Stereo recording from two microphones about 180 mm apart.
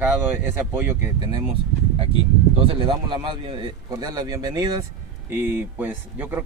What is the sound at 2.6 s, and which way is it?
A man's voice, 30° right (ahead or behind).